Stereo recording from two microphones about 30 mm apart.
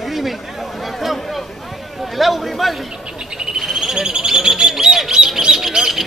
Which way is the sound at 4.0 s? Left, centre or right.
Right.